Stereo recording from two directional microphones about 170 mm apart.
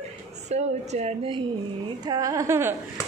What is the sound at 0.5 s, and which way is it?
Speech, 40° right (ahead or behind).